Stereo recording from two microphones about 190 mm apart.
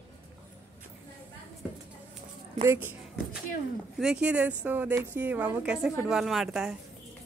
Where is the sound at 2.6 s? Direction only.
15° right (ahead or behind).